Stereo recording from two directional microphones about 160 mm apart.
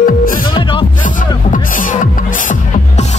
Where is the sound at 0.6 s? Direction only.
30° left (ahead or behind).